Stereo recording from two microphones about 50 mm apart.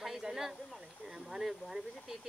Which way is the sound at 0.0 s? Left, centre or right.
Centre.